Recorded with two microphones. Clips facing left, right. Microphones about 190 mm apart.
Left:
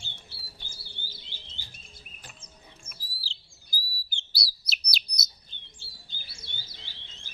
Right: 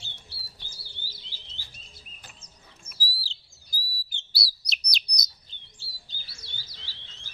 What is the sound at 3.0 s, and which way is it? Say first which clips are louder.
Chirp: right 7 dB; centre (ahead or behind).